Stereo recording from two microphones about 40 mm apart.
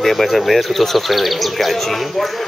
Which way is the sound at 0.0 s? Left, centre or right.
Centre.